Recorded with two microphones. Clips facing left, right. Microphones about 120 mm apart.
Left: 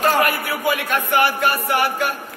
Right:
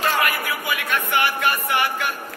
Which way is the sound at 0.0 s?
45° left (ahead or behind).